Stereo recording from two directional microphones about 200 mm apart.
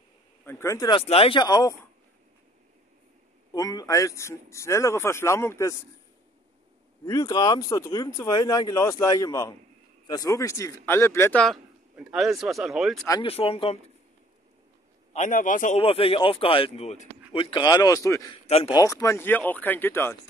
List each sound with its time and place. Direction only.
0.5 s speech: 15° left (ahead or behind)
3.5 s speech: 20° left (ahead or behind)
7.1 s speech: 20° left (ahead or behind); by 13.1 s centre (ahead or behind)
13.1 s speech: 25° left (ahead or behind)
15.1 s a man's voice: 40° left (ahead or behind)
15.8 s speech: 30° left (ahead or behind); by 20.2 s 10° left (ahead or behind)